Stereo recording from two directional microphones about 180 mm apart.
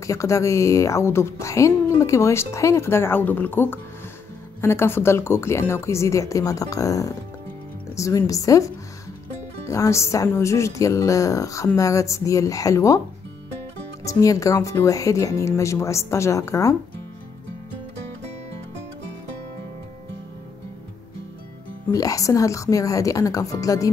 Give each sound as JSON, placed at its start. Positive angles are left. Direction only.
{"t": 0.0, "sound": "a woman's voice", "side_deg": 15}
{"t": 9.7, "sound": "a woman's voice", "side_deg": 15}
{"t": 14.0, "sound": "a woman's voice", "side_deg": 20}
{"t": 21.9, "sound": "a woman's voice", "side_deg": 20}